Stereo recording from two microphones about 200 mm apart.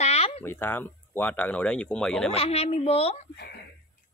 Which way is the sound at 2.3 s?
30° left (ahead or behind).